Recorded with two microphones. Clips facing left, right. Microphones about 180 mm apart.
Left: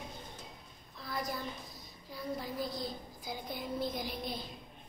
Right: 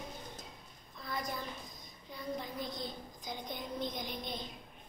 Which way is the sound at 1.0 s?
Centre (ahead or behind).